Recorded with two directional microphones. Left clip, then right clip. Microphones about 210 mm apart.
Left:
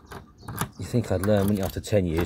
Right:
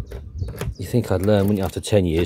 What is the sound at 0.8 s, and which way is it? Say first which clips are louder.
Speech: right 6 dB; 20° right (ahead or behind).